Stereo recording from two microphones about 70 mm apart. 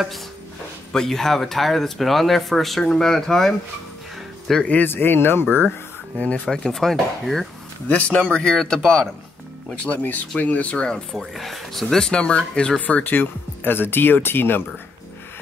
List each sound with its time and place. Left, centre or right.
0.9 s speech: centre
4.6 s speech: left
6.1 s speech: centre
7.9 s speech: centre
9.8 s speech: left
11.1 s speech: centre; by 14.6 s left